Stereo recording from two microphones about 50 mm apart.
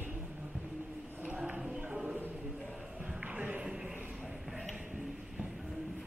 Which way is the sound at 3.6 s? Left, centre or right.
Centre.